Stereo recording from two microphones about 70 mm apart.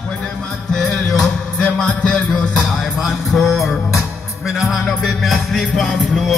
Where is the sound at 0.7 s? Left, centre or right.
Centre.